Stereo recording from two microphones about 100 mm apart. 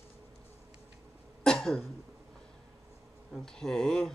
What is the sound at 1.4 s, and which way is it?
Cough, 5° left (ahead or behind).